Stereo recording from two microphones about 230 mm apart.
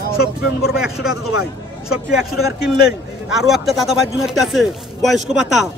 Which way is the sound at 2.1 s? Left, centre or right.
Centre.